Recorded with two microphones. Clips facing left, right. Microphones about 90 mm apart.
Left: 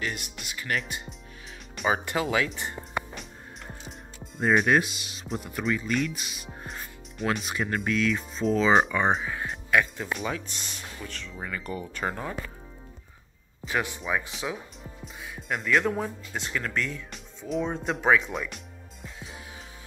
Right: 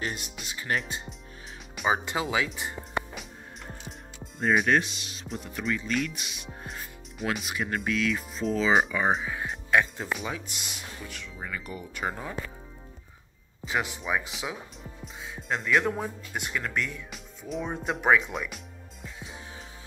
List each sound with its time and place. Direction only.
0.0 s speech: 35° right (ahead or behind)
1.9 s speech: 15° right (ahead or behind)
4.2 s speech: centre (ahead or behind)
9.7 s speech: 20° right (ahead or behind)
10.3 s speech: 10° right (ahead or behind)
13.7 s speech: 15° right (ahead or behind)
15.1 s music: 20° right (ahead or behind)
15.6 s speech: 5° right (ahead or behind)
17.1 s speech: centre (ahead or behind)
17.6 s speech: 10° right (ahead or behind)
18.2 s speech: centre (ahead or behind)